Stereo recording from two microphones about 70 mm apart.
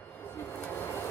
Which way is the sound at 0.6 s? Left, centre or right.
Left.